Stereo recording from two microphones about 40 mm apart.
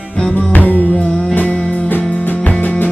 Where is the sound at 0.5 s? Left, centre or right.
Left.